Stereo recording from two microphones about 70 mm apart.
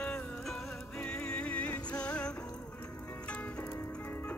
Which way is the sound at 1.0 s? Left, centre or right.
Centre.